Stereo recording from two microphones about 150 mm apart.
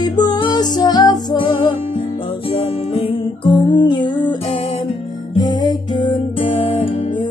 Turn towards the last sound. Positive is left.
turn(degrees=30)  # may be behind; listen again after turning